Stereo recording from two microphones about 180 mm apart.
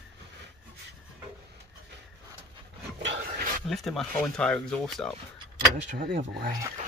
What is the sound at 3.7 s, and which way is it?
Speech, centre (ahead or behind).